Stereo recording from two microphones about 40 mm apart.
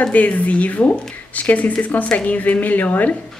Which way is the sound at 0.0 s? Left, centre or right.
Left.